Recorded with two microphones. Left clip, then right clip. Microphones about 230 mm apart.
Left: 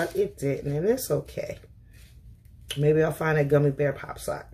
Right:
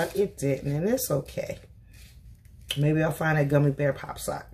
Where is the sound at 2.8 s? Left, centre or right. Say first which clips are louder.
Left 4 dB; centre.